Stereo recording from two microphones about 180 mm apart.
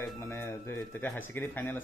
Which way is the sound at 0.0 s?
15° left (ahead or behind).